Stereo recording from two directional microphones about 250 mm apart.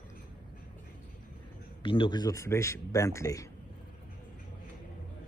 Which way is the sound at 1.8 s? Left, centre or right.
Centre.